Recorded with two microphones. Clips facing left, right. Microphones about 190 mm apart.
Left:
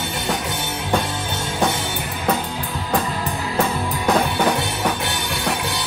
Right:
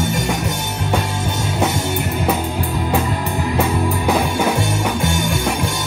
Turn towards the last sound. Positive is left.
turn(degrees=-45)  # may be behind; listen again after turning